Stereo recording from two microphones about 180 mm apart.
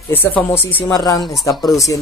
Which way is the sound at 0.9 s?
20° left (ahead or behind).